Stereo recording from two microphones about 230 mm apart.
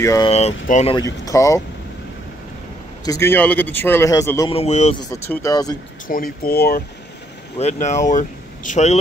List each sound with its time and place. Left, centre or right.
0.0 s speech: centre
0.3 s speech: left
0.9 s speech: centre
3.1 s speech: centre
4.5 s speech: left
5.1 s speech: centre
6.0 s speech: left
7.5 s speech: left